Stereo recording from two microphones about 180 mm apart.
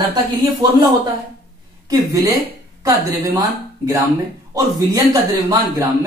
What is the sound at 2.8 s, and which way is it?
Speech, 20° right (ahead or behind).